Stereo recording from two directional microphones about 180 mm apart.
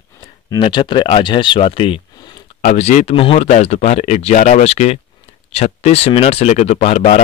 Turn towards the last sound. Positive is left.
turn(degrees=35)  # may be behind; listen again after turning